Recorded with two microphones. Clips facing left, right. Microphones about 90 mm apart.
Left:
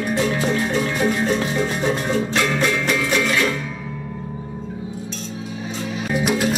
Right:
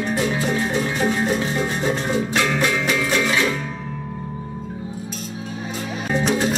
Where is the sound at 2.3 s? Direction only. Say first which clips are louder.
Even; 5° right (ahead or behind).